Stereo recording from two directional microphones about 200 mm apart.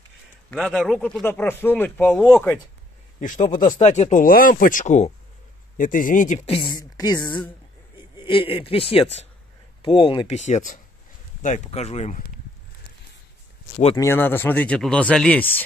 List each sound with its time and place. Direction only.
0.5 s a man's voice: centre (ahead or behind)
3.2 s speech: 40° left (ahead or behind)
13.9 s speech: 10° left (ahead or behind)